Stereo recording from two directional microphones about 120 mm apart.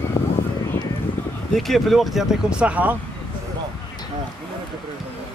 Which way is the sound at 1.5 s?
Centre (ahead or behind).